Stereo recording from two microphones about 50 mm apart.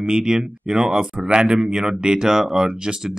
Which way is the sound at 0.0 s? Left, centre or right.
Centre.